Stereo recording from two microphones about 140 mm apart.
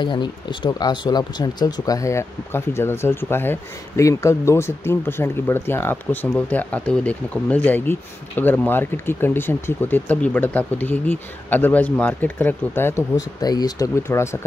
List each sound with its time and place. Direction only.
0.0 s speech: 35° left (ahead or behind)